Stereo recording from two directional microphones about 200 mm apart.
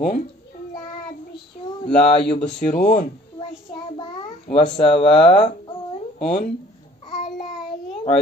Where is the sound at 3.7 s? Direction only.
25° left (ahead or behind).